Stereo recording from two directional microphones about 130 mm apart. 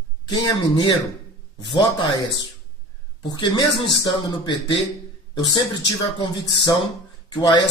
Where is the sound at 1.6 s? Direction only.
40° left (ahead or behind).